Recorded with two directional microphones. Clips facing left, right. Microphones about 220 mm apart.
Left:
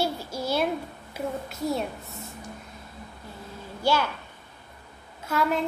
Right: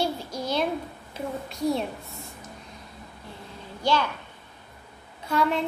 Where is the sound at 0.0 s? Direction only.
5° left (ahead or behind).